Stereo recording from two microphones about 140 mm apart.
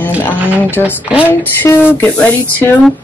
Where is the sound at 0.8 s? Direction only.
10° right (ahead or behind).